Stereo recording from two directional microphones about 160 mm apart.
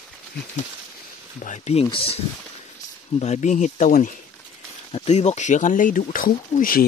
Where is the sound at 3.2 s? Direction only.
45° left (ahead or behind).